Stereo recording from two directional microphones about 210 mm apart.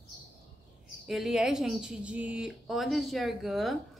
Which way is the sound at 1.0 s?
Centre (ahead or behind).